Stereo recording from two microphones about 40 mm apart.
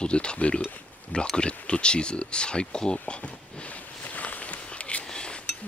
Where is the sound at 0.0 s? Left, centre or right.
Left.